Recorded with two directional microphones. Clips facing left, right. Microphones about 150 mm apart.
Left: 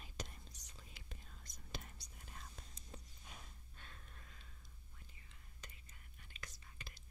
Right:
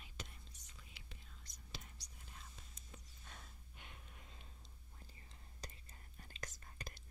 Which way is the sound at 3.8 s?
15° right (ahead or behind).